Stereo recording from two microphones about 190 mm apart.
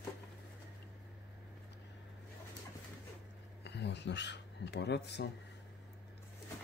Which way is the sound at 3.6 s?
65° left (ahead or behind).